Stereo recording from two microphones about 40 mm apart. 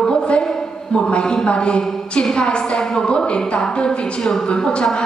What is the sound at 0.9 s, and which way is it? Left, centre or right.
A woman's voice, left.